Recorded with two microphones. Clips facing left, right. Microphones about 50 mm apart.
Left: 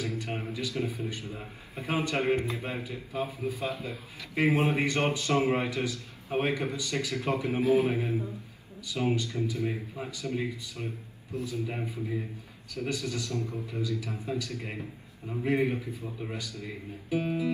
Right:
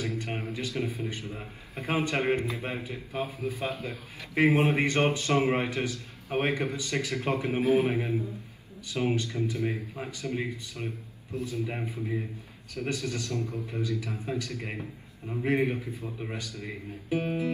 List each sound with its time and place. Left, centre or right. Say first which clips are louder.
0.5 s speech: left 1 dB; right
14.8 s a man's voice: right 1 dB; centre
15.4 s speech: right 1 dB; right